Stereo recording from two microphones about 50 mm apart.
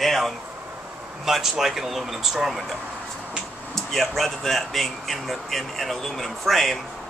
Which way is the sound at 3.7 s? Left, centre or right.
Centre.